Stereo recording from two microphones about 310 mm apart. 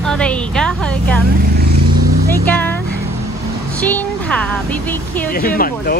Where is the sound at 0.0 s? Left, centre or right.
Centre.